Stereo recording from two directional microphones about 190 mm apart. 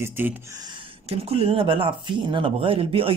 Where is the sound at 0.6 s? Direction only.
30° right (ahead or behind).